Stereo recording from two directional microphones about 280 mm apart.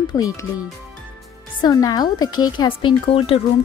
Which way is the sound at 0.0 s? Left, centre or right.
Centre.